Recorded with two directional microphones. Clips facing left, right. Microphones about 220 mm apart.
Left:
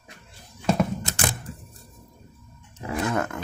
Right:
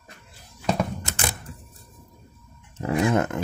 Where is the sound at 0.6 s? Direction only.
Centre (ahead or behind).